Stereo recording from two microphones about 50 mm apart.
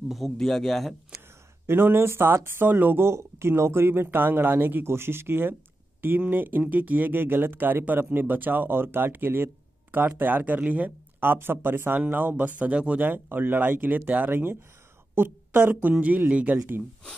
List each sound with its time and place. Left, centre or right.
0.1 s speech: centre
1.7 s speech: right
2.7 s speech: right
3.0 s speech: right
4.8 s speech: right
6.6 s speech: right
11.1 s a woman's voice: right